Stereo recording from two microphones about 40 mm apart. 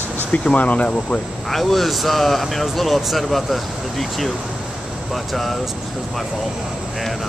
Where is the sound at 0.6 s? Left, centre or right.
Left.